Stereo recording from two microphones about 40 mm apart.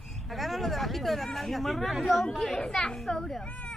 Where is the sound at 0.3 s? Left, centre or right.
Centre.